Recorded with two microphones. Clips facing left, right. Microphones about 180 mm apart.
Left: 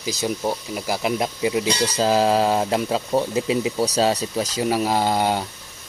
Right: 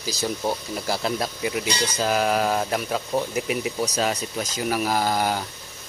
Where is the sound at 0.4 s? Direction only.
10° left (ahead or behind); by 5.4 s 25° left (ahead or behind).